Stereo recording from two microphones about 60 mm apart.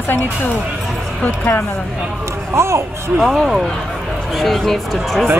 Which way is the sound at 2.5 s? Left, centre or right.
Right.